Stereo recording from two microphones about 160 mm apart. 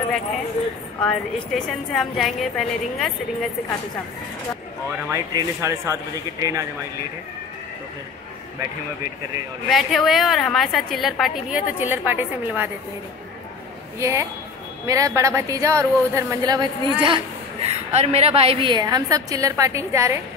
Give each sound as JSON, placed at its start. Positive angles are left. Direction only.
{"t": 1.0, "sound": "a woman's voice", "side_deg": 5}
{"t": 5.1, "sound": "a woman's voice", "side_deg": -20}
{"t": 9.7, "sound": "a woman's voice", "side_deg": 0}
{"t": 13.9, "sound": "a woman's voice", "side_deg": -20}
{"t": 17.6, "sound": "a woman's voice", "side_deg": -40}